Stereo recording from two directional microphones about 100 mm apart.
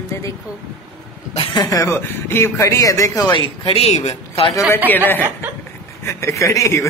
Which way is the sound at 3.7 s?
75° left (ahead or behind).